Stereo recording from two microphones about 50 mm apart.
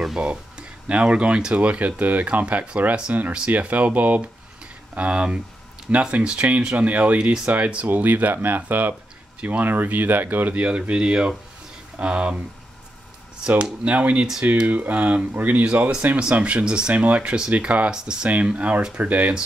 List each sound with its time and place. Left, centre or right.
0.2 s speech: right
13.6 s speech: right
17.9 s speech: centre
18.9 s speech: right